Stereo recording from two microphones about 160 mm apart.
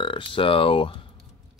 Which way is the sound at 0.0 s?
30° left (ahead or behind).